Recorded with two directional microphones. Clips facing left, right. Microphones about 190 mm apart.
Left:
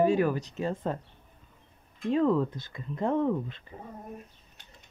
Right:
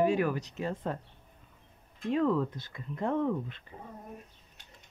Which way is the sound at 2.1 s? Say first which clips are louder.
Left 3 dB; 30° left (ahead or behind).